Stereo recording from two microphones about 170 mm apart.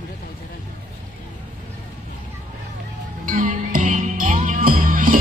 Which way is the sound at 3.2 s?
55° right (ahead or behind).